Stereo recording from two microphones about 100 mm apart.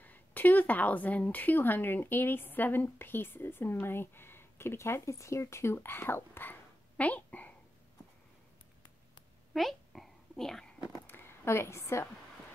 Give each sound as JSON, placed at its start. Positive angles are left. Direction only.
{"t": 0.0, "sound": "a woman's voice", "side_deg": 20}
{"t": 9.5, "sound": "a sound", "side_deg": 0}
{"t": 11.1, "sound": "a woman's voice", "side_deg": 25}